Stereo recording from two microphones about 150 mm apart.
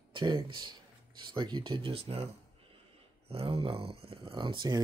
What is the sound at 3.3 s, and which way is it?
Speech, 40° right (ahead or behind).